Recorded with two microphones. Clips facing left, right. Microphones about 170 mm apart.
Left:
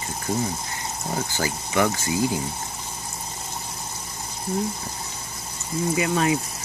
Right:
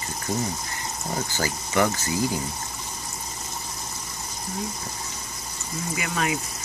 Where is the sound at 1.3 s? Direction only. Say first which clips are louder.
Left 1 dB; 15° left (ahead or behind).